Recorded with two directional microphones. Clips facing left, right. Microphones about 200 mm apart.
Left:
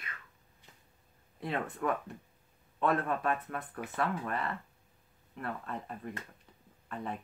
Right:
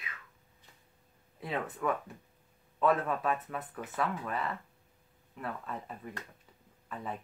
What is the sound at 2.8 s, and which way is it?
Speech, centre (ahead or behind).